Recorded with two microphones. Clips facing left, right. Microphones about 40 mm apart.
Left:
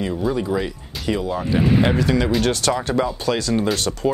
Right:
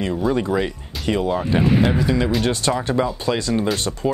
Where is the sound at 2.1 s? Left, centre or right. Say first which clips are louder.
Left 1 dB; centre.